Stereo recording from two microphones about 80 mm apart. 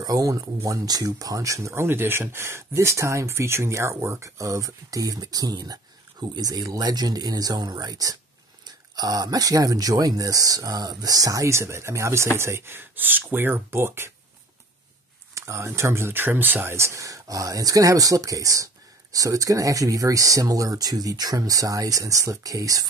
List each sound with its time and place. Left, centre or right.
0.0 s speech: right
15.3 s speech: right